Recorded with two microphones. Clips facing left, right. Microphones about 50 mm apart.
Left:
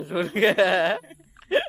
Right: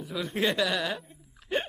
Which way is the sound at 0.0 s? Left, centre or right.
Left.